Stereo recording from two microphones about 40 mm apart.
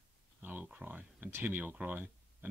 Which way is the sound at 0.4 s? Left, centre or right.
Right.